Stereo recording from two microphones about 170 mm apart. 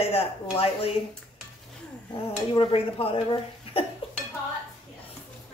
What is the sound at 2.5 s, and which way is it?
Speech, 35° left (ahead or behind).